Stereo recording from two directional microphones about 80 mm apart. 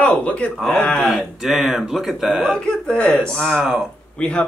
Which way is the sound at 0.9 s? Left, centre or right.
Centre.